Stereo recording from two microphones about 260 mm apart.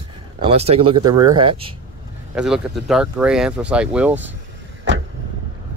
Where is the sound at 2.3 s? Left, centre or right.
Centre.